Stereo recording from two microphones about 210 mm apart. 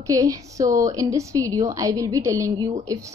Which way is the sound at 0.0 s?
15° right (ahead or behind).